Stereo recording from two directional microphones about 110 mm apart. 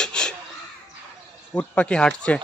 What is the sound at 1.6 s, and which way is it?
Speech, 10° left (ahead or behind).